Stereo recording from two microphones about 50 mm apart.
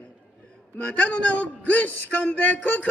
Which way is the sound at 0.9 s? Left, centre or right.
Left.